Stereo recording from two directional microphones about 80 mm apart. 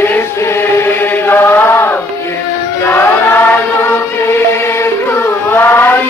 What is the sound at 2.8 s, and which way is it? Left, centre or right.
Choir, left.